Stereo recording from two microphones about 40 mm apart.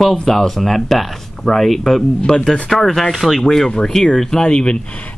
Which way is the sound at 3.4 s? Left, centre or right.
Centre.